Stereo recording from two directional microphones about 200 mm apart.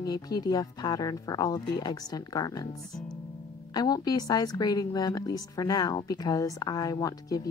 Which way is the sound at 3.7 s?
20° left (ahead or behind).